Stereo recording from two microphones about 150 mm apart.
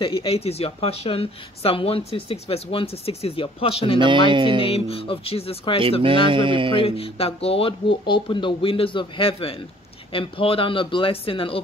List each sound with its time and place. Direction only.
0.0 s speech: 35° left (ahead or behind)
4.0 s speech: 35° right (ahead or behind)
4.6 s speech: 40° left (ahead or behind)
6.0 s speech: 35° right (ahead or behind)
6.8 s speech: 40° left (ahead or behind)